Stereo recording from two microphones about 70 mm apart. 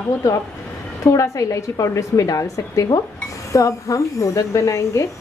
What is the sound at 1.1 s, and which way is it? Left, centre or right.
A woman's voice, left.